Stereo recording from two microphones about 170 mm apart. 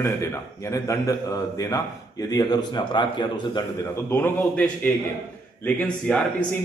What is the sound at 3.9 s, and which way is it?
A man's voice, 15° left (ahead or behind).